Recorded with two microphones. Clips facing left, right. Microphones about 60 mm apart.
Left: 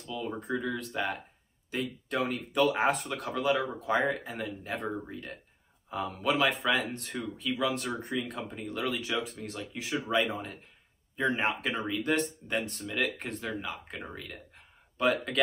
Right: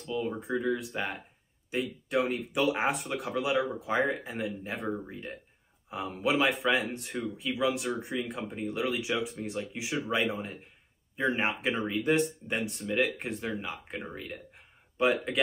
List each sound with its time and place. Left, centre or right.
0.4 s speech: centre
4.8 s speech: centre
5.1 s speech: centre
9.9 s speech: centre
10.2 s speech: centre